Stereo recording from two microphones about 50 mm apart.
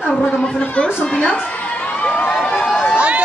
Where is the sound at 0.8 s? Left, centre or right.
Centre.